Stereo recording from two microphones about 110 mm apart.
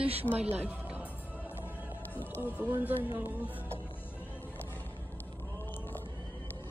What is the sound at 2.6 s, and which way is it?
Speech, 20° right (ahead or behind).